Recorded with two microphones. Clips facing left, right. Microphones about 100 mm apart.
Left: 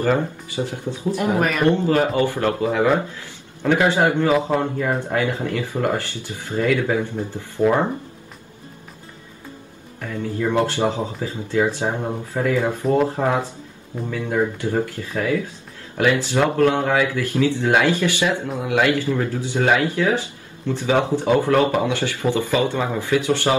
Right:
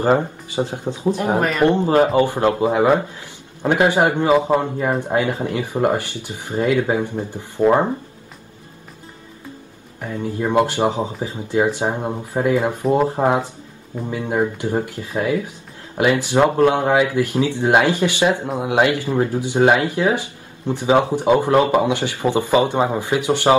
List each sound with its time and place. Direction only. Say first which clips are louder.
0.0 s speech: right 3 dB; 20° right (ahead or behind)
9.9 s speech: right 1 dB; 20° right (ahead or behind)